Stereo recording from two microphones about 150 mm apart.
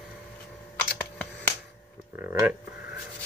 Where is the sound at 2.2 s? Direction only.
15° right (ahead or behind).